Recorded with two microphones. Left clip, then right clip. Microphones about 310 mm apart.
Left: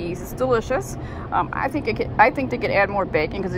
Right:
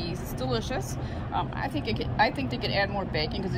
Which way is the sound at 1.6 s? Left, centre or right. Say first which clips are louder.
Left 8 dB; centre.